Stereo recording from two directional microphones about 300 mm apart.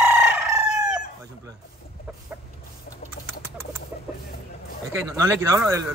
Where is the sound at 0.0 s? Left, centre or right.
Centre.